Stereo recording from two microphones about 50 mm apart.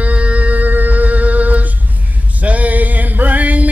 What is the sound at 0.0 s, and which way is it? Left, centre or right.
Music, right.